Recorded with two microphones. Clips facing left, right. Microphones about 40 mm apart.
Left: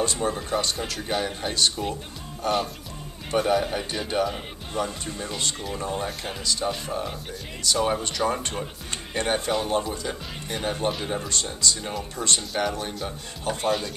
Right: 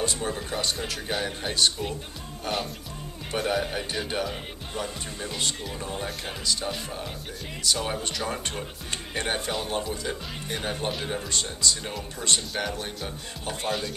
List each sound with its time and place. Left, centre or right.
0.0 s speech: centre